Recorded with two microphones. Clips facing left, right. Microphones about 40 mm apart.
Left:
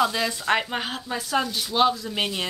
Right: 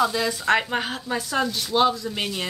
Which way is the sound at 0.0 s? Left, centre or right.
Centre.